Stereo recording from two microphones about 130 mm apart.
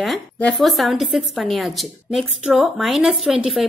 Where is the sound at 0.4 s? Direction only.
5° left (ahead or behind).